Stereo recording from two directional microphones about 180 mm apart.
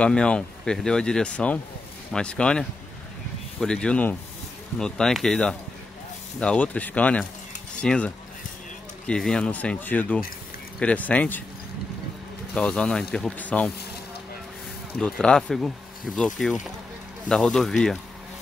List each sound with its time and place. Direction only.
0.0 s speech: 5° left (ahead or behind)
12.5 s speech: 5° left (ahead or behind)
15.0 s speech: 5° left (ahead or behind)